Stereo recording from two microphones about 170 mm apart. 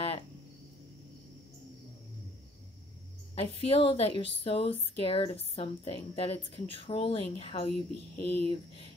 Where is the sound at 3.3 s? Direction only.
35° left (ahead or behind).